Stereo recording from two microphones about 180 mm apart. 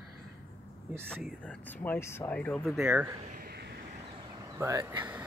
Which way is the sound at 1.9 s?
15° left (ahead or behind).